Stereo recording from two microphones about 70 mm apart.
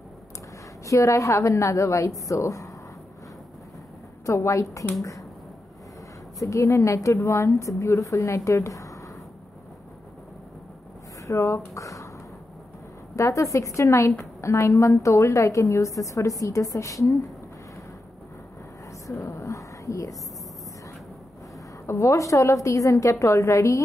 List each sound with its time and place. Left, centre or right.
0.8 s a woman's voice: left
4.3 s a woman's voice: left
6.4 s a woman's voice: left
11.2 s speech: left
13.1 s a woman's voice: left
19.1 s a sound: left
21.8 s a woman's voice: left